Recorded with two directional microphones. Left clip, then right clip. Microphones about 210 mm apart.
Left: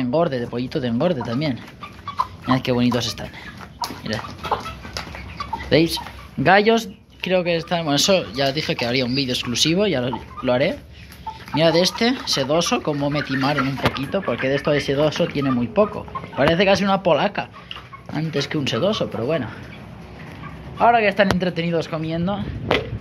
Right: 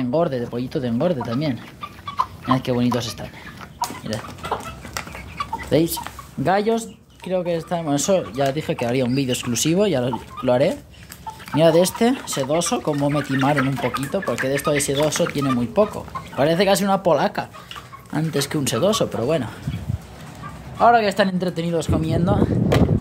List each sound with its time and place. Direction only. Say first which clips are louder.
0.0 s speech: left 1 dB; 20° right (ahead or behind)
5.4 s speech: left 2 dB; 15° right (ahead or behind); by 19.5 s 35° right (ahead or behind)
20.8 s speech: even; 30° right (ahead or behind)
21.4 s speech: left 1 dB; 15° right (ahead or behind); by 22.4 s 35° right (ahead or behind)